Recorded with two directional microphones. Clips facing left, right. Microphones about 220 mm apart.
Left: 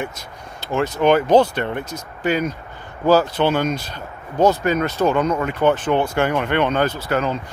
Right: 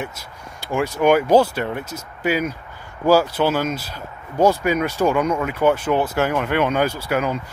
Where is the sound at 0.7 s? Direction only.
10° right (ahead or behind).